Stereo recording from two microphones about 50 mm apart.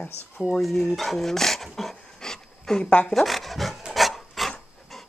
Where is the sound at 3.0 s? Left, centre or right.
Centre.